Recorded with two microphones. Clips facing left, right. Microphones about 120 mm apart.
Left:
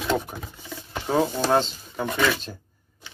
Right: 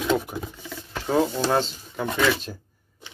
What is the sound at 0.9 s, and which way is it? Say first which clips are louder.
Speech: right 1 dB; 5° left (ahead or behind).